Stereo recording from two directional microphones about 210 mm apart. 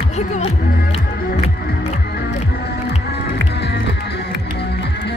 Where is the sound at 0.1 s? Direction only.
35° left (ahead or behind).